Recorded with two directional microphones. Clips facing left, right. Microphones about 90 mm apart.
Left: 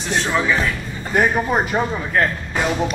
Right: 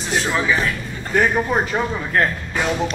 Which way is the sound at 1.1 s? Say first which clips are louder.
Even; 10° left (ahead or behind).